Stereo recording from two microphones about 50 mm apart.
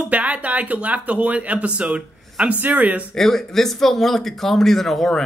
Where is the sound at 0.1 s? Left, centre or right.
Right.